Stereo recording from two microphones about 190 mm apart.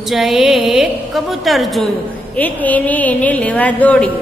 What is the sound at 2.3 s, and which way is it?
A woman's voice, 10° left (ahead or behind).